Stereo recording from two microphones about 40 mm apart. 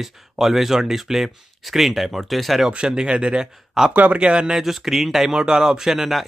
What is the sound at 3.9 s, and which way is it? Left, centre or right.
Speech, right.